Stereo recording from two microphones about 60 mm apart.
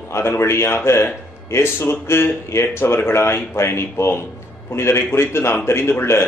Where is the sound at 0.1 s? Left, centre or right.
Left.